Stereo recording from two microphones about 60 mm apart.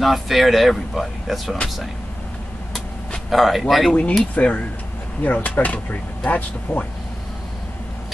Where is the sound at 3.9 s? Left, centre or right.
Left.